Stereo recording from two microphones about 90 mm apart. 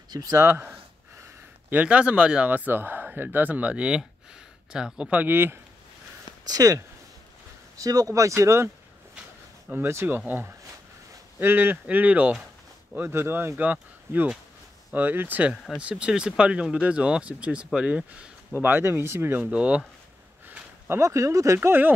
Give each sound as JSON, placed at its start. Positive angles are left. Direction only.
{"t": 0.1, "sound": "speech", "side_deg": -45}
{"t": 0.4, "sound": "speech", "side_deg": -25}
{"t": 6.4, "sound": "speech", "side_deg": -40}
{"t": 9.8, "sound": "speech", "side_deg": -25}
{"t": 15.5, "sound": "speech", "side_deg": 5}
{"t": 15.8, "sound": "speech", "side_deg": -15}
{"t": 18.5, "sound": "speech", "side_deg": -25}
{"t": 20.4, "sound": "a sound", "side_deg": -15}
{"t": 20.9, "sound": "speech", "side_deg": -35}
{"t": 21.5, "sound": "speech", "side_deg": -20}